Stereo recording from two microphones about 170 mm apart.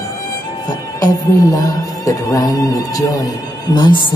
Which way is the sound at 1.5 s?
20° left (ahead or behind).